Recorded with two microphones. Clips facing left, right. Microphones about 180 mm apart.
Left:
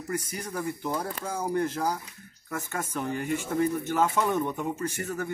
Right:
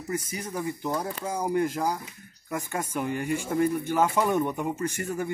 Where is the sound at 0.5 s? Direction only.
15° right (ahead or behind).